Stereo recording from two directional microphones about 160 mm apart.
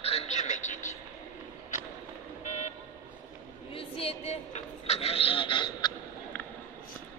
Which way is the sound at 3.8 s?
35° left (ahead or behind).